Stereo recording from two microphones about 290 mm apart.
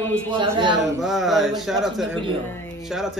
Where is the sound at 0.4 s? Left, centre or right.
Centre.